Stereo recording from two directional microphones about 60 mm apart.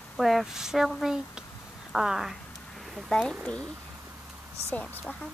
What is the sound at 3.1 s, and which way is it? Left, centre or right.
Speech, centre.